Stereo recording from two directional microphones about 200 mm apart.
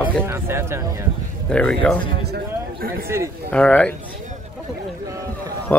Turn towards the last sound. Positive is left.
turn(degrees=10)  # may be behind; listen again after turning